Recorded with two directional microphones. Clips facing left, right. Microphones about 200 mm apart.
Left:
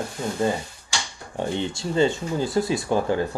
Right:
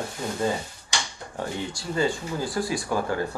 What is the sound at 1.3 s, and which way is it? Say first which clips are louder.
Speech: left 5 dB; 25° left (ahead or behind).